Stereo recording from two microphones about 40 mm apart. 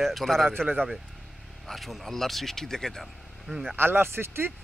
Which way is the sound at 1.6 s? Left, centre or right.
Centre.